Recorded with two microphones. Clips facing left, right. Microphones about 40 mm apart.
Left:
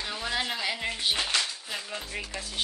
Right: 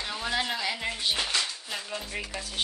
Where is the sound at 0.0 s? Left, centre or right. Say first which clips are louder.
Right 1 dB; centre.